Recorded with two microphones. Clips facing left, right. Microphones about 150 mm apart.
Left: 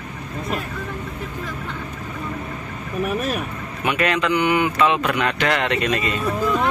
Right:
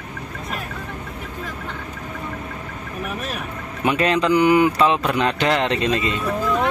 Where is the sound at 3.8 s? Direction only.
30° right (ahead or behind).